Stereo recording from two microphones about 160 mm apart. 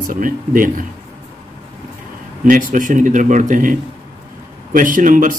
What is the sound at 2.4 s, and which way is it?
Speech, 55° right (ahead or behind).